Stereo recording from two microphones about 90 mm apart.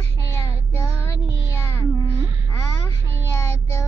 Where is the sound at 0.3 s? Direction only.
30° left (ahead or behind).